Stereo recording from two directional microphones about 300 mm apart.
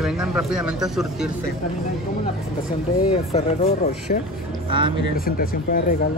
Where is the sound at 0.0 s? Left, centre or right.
Centre.